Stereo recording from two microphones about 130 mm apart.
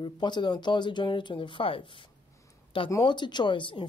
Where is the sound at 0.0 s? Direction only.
35° left (ahead or behind).